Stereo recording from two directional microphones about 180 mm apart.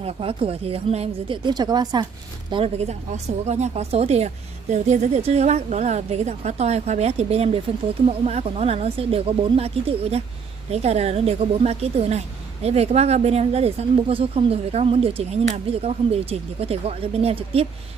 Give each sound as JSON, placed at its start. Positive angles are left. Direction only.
{"t": 0.0, "sound": "speech", "side_deg": -30}
{"t": 2.5, "sound": "speech", "side_deg": -35}